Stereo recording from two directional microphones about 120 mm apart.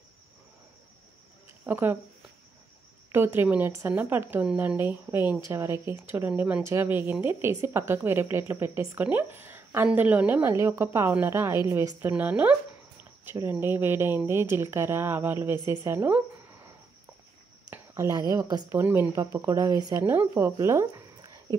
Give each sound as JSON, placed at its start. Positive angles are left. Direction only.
{"t": 1.7, "sound": "speech", "side_deg": -15}
{"t": 3.1, "sound": "a woman's voice", "side_deg": -20}
{"t": 17.9, "sound": "a woman's voice", "side_deg": -25}
{"t": 20.0, "sound": "a woman's voice", "side_deg": -20}